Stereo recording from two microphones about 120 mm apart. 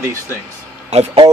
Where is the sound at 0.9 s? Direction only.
65° right (ahead or behind).